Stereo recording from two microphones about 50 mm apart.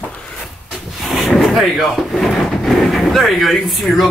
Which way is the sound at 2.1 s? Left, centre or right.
Centre.